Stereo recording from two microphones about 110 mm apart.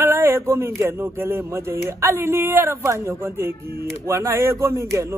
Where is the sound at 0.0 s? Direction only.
20° right (ahead or behind).